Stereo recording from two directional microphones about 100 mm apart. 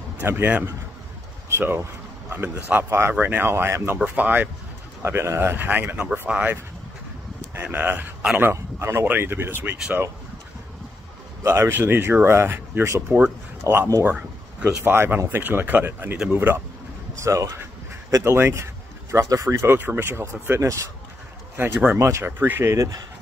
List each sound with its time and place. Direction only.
0.2 s speech: 20° right (ahead or behind)
7.6 s speech: 20° right (ahead or behind)
11.4 s speech: 25° right (ahead or behind)
14.0 s a sound: 20° right (ahead or behind)
14.8 s speech: 20° right (ahead or behind)
17.2 s speech: 35° right (ahead or behind)
19.6 s speech: 20° right (ahead or behind)